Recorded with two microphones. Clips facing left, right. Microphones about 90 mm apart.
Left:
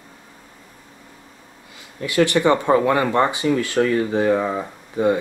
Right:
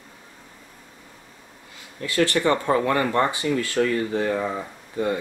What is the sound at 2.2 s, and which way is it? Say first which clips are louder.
Speech: left 4 dB; 15° left (ahead or behind).